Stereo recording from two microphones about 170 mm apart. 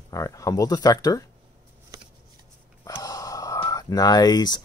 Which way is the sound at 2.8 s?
20° left (ahead or behind).